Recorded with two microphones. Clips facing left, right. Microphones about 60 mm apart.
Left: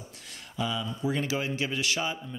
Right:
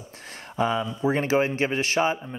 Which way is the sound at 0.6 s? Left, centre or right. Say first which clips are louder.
Right 7 dB; right.